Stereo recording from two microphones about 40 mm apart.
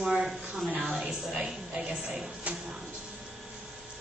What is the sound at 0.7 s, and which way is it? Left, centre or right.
A woman's voice, right.